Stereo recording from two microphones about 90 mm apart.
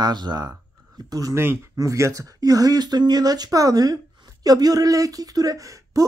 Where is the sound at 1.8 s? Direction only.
35° right (ahead or behind).